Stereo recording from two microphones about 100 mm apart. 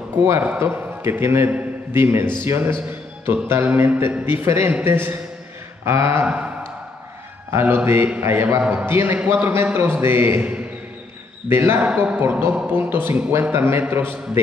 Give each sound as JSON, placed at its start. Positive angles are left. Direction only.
{"t": 0.2, "sound": "a man's voice", "side_deg": -20}
{"t": 6.2, "sound": "speech", "side_deg": -15}
{"t": 7.5, "sound": "a man's voice", "side_deg": -25}